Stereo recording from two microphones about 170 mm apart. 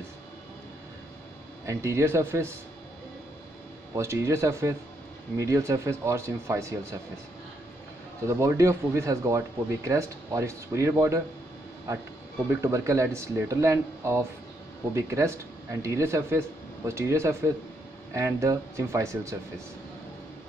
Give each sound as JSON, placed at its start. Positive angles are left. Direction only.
{"t": 1.7, "sound": "speech", "side_deg": -15}
{"t": 3.9, "sound": "speech", "side_deg": -15}
{"t": 8.3, "sound": "speech", "side_deg": -15}
{"t": 12.4, "sound": "speech", "side_deg": -15}